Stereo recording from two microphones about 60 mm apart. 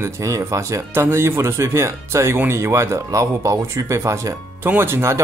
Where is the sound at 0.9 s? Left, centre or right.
Right.